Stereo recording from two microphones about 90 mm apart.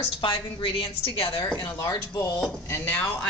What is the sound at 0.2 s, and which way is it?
A woman's voice, 75° left (ahead or behind).